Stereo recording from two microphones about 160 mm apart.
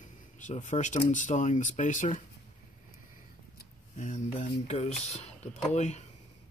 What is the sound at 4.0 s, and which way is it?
Speech, 50° left (ahead or behind).